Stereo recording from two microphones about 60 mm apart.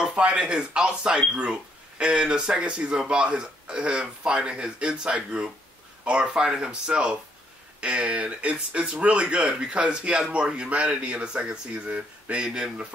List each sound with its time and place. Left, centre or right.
0.0 s speech: centre
12.4 s speech: centre